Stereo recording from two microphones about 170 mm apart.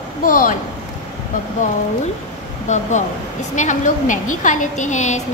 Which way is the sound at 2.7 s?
45° left (ahead or behind).